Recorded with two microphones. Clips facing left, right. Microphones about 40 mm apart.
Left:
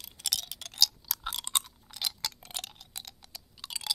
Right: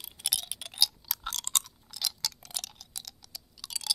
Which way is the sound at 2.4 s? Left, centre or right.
Left.